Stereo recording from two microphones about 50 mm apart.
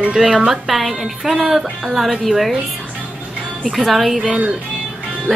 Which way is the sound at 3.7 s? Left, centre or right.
Centre.